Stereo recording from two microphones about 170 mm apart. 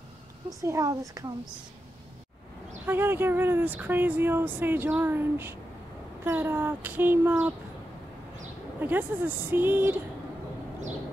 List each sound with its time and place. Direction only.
0.5 s a woman's voice: 20° right (ahead or behind)
2.9 s speech: 10° right (ahead or behind)
8.7 s speech: 10° right (ahead or behind)